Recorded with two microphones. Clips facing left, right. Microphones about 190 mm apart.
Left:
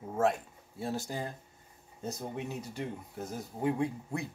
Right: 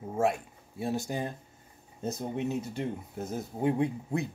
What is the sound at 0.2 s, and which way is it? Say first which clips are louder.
Speech: right 1 dB; 10° right (ahead or behind).